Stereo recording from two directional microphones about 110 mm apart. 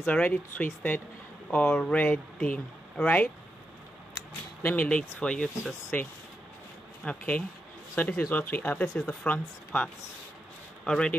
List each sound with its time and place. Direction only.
0.0 s speech: 10° left (ahead or behind)
4.6 s speech: 15° left (ahead or behind)
10.9 s speech: 10° left (ahead or behind)